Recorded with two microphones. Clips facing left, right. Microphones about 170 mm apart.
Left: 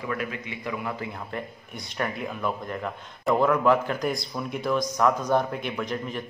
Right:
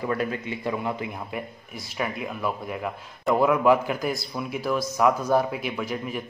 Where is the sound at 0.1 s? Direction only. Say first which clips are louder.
Right 2 dB; 35° right (ahead or behind).